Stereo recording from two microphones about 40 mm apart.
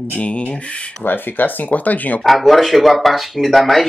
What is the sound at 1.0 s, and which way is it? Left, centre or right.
Speech, left.